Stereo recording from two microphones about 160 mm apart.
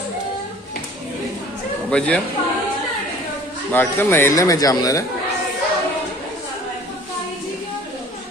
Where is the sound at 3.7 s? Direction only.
10° left (ahead or behind).